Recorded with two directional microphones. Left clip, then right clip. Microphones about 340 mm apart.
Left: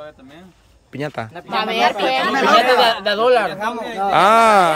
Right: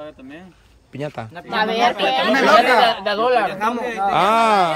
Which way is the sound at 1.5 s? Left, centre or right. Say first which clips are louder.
Even; left.